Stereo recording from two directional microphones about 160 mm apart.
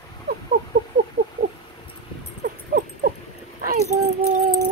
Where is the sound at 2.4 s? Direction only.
60° right (ahead or behind).